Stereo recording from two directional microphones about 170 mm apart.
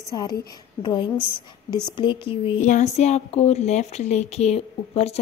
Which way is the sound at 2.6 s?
45° left (ahead or behind).